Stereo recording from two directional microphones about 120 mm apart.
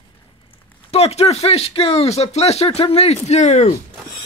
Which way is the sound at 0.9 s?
60° left (ahead or behind).